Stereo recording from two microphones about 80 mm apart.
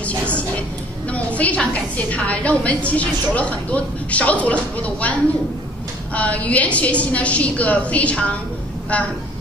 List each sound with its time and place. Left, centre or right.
1.1 s a woman's voice: centre